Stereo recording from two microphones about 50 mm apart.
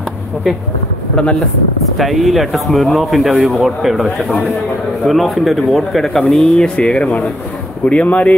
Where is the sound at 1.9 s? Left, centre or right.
Centre.